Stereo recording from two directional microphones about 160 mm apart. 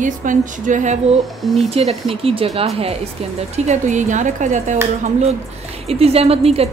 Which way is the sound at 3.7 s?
50° right (ahead or behind).